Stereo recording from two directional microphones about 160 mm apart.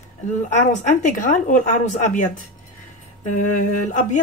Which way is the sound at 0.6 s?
50° left (ahead or behind).